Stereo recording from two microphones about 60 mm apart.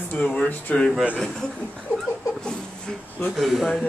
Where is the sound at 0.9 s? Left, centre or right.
Right.